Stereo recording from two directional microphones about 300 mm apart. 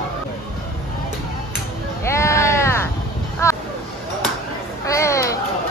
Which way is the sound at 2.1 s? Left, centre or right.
Centre.